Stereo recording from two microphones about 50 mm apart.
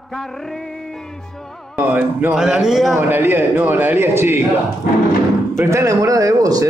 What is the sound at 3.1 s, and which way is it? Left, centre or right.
A man's voice, right.